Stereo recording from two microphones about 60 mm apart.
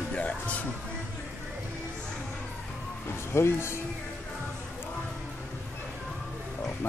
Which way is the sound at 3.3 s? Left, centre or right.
Left.